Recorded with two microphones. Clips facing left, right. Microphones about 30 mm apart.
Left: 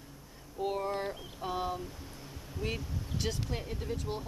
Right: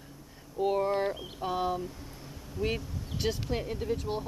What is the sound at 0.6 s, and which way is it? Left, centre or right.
Speech, centre.